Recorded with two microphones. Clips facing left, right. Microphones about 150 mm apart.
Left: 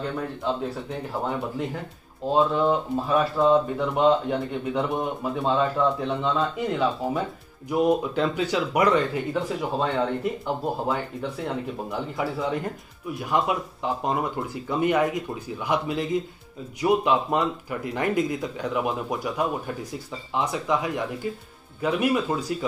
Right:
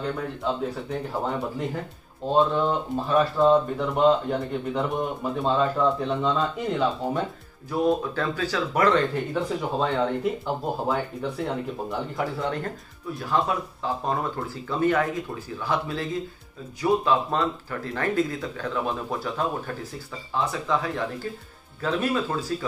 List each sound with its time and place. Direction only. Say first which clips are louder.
0.4 s speech: even; centre (ahead or behind)
7.7 s speech: left 2 dB; 20° left (ahead or behind); by 12.5 s centre (ahead or behind)
13.2 s speech: left 1 dB; 15° left (ahead or behind)